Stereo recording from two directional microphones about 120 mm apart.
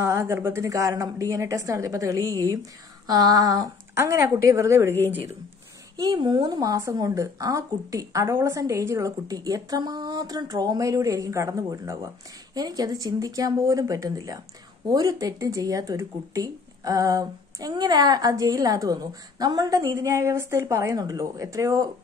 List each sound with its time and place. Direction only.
0.0 s speech: 20° right (ahead or behind)
5.9 s speech: 35° right (ahead or behind)